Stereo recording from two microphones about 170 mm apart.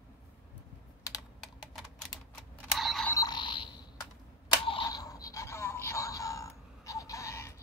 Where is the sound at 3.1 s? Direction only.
25° left (ahead or behind).